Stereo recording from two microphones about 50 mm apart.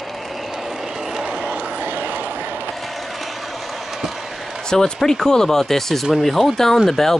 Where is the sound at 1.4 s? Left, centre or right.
Right.